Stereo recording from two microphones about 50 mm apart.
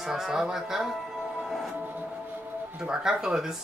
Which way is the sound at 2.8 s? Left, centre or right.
Centre.